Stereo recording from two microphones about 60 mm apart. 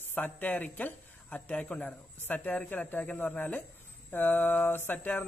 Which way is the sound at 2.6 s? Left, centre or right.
Left.